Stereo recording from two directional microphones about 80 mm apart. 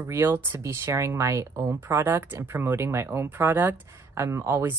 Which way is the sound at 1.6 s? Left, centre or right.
Right.